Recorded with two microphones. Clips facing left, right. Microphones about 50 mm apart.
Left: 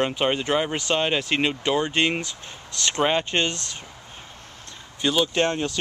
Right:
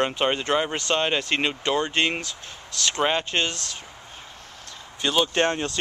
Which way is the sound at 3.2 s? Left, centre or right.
Centre.